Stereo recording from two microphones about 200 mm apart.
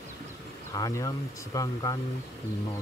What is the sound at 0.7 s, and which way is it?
Speech, 15° left (ahead or behind).